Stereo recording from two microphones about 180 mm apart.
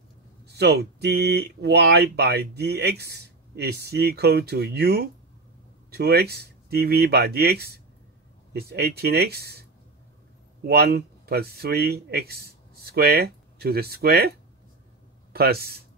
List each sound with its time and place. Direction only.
0.5 s speech: 65° right (ahead or behind)
10.7 s speech: 60° right (ahead or behind)
15.3 s speech: 60° right (ahead or behind)